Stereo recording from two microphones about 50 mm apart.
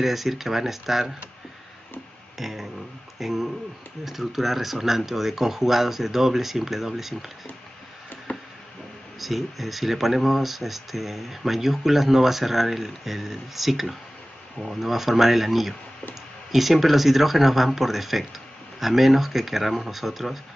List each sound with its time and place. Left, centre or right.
0.0 s speech: centre
2.3 s speech: centre
8.3 s a sound: left
9.2 s speech: centre